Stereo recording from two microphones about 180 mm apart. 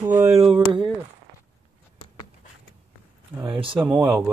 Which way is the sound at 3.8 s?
5° right (ahead or behind).